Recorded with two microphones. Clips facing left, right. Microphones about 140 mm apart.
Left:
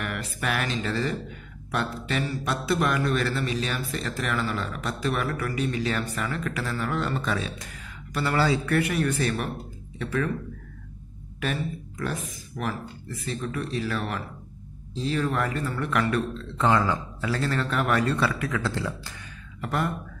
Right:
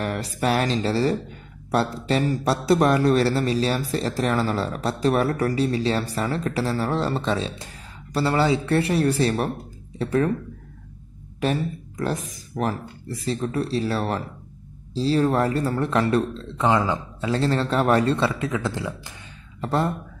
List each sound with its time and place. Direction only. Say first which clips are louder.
0.0 s speech: right 6 dB; 35° right (ahead or behind)
11.3 s speech: right 5 dB; 35° right (ahead or behind)
16.4 s a man's voice: left 2 dB; 20° right (ahead or behind)
19.6 s a man's voice: right 4 dB; 30° right (ahead or behind)